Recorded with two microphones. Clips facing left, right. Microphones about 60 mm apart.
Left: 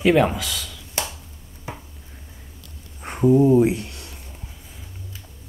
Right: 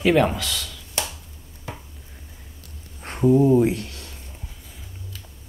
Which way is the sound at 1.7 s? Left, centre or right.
Centre.